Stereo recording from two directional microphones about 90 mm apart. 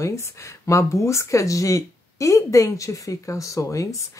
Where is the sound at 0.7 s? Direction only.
35° left (ahead or behind).